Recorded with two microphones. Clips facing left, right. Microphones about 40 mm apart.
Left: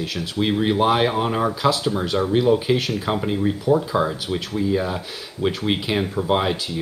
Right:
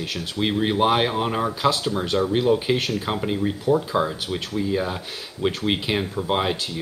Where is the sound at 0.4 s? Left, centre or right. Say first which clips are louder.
Left 2 dB; centre.